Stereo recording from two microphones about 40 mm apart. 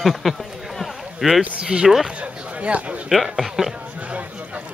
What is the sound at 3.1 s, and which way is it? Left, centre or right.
Speech, centre.